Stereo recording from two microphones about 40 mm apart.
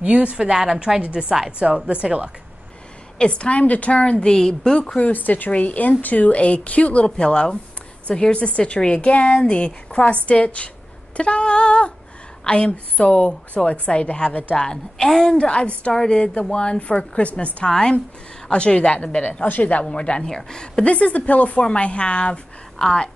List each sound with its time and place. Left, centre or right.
0.0 s a woman's voice: right
3.2 s speech: left
4.9 s speech: left
5.5 s speech: left
7.1 s speech: left
15.3 s speech: left
15.9 s a woman's voice: centre; by 17.5 s left
17.6 s speech: centre
19.4 s speech: left
19.8 s speech: left
20.2 s a woman's voice: centre
20.8 s a woman's voice: left; by 23.0 s centre